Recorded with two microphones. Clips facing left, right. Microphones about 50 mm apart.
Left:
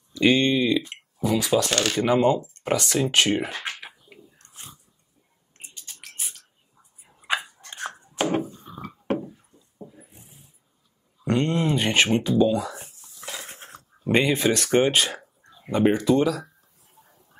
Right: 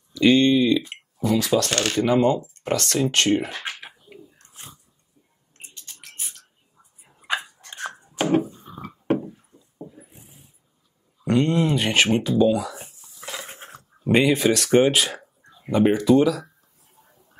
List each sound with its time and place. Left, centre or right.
0.1 s speech: centre
3.6 s pigeon: centre
5.6 s a sound: left
7.2 s a sound: centre
9.8 s mechanisms: centre
11.2 s speech: centre
13.5 s dog: centre
14.0 s speech: centre